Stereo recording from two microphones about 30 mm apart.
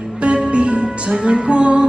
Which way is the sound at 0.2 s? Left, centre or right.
Right.